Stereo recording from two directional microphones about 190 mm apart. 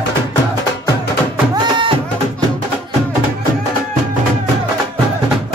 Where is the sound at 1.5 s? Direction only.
25° right (ahead or behind).